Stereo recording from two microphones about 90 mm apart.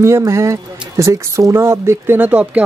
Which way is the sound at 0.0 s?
30° right (ahead or behind).